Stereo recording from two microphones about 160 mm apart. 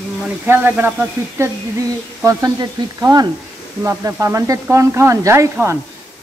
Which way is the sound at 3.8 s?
20° right (ahead or behind).